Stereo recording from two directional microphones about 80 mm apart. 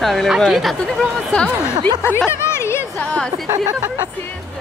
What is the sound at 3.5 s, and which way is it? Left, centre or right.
Speech, right.